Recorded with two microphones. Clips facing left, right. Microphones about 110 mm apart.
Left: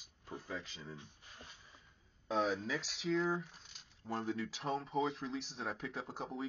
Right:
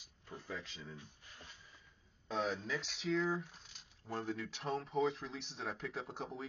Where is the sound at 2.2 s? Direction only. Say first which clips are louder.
Left 3 dB; centre (ahead or behind).